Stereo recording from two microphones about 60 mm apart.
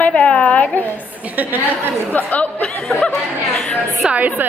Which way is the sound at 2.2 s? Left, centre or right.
Left.